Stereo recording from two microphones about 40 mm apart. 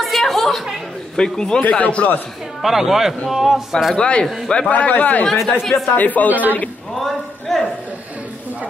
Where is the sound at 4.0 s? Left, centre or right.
Left.